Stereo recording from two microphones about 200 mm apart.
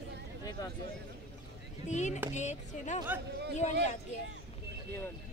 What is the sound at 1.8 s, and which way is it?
Speech, 35° left (ahead or behind).